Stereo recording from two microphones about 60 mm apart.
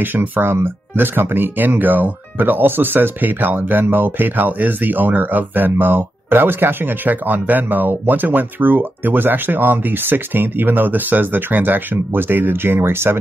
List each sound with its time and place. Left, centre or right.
0.0 s speech: right